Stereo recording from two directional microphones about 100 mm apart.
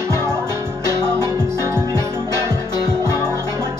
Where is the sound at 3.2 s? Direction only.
25° right (ahead or behind).